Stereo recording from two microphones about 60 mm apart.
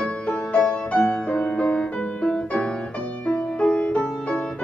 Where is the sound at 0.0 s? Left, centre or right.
Centre.